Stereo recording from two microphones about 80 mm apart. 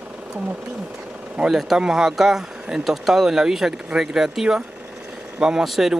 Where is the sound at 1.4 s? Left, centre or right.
Centre.